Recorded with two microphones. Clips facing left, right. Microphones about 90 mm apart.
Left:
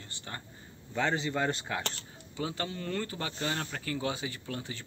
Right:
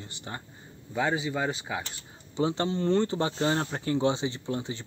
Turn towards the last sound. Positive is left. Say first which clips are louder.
# right 7 dB
turn(degrees=-20)  # may be behind; listen again after turning